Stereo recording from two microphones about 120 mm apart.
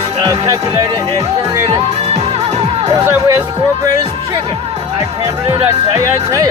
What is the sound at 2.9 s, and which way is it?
Music, 25° right (ahead or behind).